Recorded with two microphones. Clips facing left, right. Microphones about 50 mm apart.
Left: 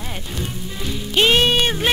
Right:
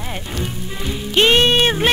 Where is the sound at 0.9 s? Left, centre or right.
Centre.